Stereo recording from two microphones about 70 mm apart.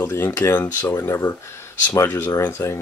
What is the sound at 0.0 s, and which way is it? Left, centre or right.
Speech, left.